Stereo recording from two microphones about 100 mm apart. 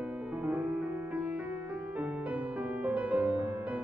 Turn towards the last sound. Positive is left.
turn(degrees=-15)  # may be behind; listen again after turning